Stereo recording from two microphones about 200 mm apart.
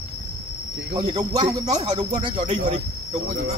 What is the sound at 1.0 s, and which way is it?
Speech, 25° right (ahead or behind).